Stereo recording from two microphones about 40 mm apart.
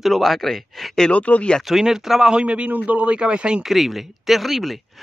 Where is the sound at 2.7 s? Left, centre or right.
Right.